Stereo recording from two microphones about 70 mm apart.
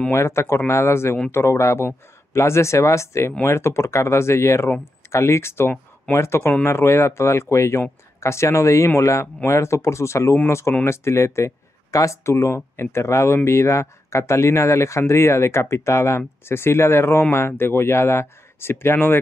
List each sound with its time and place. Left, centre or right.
0.1 s speech: left